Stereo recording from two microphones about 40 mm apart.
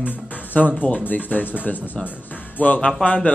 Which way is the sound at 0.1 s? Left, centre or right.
Left.